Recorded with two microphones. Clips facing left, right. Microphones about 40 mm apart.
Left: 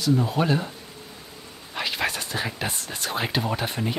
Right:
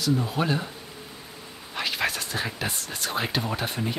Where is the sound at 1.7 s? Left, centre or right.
Centre.